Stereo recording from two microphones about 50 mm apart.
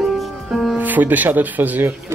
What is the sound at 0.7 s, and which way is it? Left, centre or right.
Speech, right.